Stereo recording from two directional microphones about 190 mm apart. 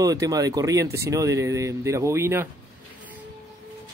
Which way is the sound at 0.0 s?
20° right (ahead or behind).